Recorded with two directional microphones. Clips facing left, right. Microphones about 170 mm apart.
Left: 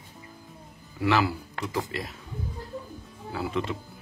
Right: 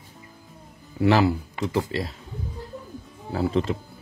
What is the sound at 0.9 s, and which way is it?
Speech, 30° right (ahead or behind).